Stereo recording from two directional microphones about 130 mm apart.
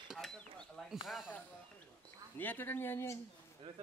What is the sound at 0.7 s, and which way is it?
Speech, centre (ahead or behind).